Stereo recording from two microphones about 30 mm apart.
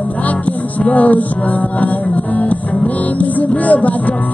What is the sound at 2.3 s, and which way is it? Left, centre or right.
Music, left.